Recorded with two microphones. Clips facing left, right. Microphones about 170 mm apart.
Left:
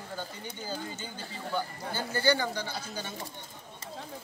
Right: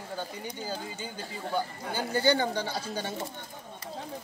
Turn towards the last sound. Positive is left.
turn(degrees=-30)  # may be behind; listen again after turning